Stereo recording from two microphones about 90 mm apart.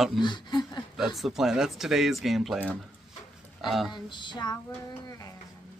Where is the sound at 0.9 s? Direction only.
Centre (ahead or behind).